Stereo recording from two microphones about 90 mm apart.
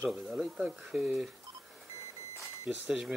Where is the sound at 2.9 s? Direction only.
10° right (ahead or behind).